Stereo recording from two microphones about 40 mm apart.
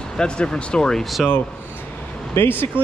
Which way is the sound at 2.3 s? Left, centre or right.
Left.